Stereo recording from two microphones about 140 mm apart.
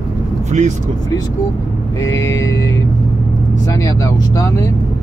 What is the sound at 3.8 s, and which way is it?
Speech, 25° left (ahead or behind).